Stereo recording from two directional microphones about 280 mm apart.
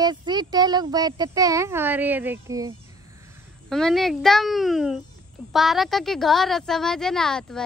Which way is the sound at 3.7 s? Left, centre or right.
Centre.